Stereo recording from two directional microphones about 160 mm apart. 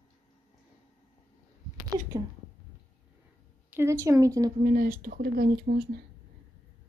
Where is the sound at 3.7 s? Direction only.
15° right (ahead or behind).